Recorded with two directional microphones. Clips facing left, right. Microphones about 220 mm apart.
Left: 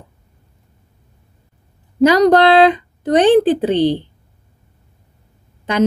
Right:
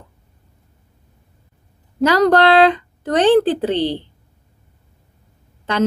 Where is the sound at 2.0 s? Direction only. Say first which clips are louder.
Left 3 dB; 15° left (ahead or behind).